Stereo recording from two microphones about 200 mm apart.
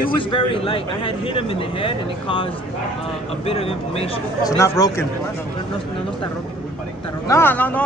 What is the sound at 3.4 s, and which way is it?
Speech, 30° left (ahead or behind).